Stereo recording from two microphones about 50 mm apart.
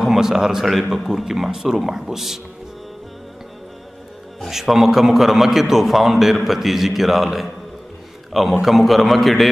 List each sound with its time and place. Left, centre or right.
0.0 s a man's voice: centre
4.5 s a man's voice: centre